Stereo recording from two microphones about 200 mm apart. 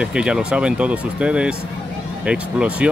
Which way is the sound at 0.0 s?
5° right (ahead or behind).